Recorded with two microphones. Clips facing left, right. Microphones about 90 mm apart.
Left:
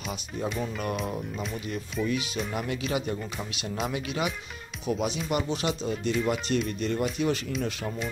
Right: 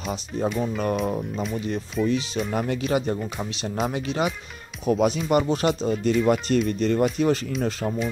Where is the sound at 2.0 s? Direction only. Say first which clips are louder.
Right 6 dB; centre (ahead or behind).